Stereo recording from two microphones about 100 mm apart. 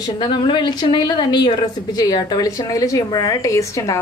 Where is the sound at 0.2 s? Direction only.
55° left (ahead or behind).